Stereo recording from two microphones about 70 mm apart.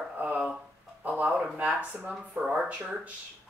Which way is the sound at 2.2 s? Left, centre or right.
Centre.